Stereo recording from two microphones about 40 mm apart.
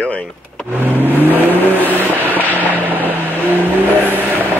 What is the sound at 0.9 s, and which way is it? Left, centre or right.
Vehicle, right.